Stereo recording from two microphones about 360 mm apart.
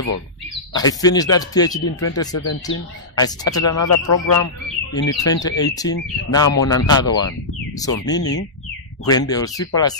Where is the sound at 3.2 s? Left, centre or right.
Centre.